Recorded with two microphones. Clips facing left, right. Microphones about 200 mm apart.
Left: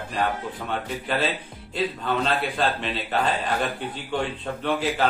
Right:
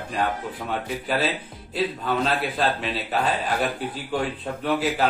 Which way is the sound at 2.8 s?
5° right (ahead or behind).